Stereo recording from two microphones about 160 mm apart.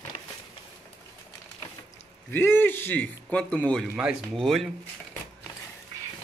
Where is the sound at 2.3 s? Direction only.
15° left (ahead or behind).